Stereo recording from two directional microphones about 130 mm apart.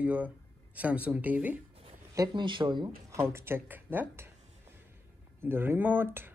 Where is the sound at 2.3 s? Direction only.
40° right (ahead or behind).